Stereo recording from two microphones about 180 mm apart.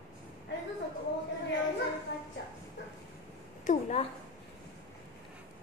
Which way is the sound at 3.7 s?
45° left (ahead or behind).